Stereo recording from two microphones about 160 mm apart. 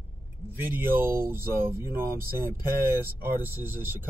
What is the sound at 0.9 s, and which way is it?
Speech, 15° right (ahead or behind).